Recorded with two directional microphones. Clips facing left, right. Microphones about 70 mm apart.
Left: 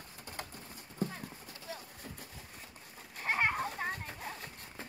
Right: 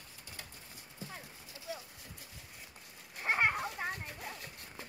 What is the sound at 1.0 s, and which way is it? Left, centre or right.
Clip-clop, left.